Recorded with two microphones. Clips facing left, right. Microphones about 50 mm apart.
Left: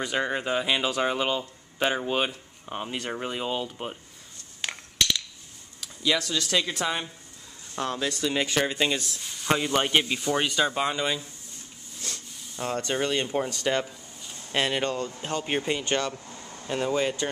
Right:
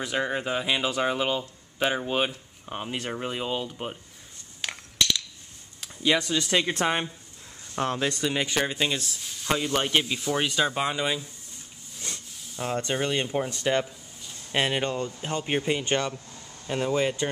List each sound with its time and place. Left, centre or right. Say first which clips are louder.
0.0 s speech: even; centre
4.6 s a sound: even; centre
6.0 s speech: right 2 dB; right
6.7 s speech: right 3 dB; right
7.7 s speech: right 2 dB; right
8.2 s speech: left 1 dB; centre
12.0 s a sound: even; centre
12.4 s speech: right 1 dB; centre
15.8 s speech: right 1 dB; centre
16.3 s air conditioning: left 4 dB; left
16.6 s speech: even; centre